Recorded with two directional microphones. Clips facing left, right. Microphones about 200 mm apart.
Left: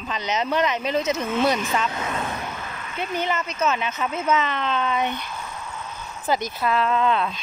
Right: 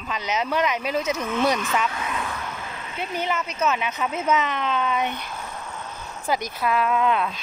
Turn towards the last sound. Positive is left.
turn(degrees=-10)  # may be behind; listen again after turning